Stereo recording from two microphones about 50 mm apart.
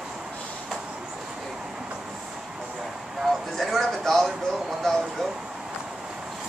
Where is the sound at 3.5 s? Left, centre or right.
Centre.